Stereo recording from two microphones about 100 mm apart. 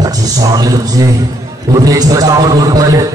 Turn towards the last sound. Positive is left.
turn(degrees=-35)  # may be behind; listen again after turning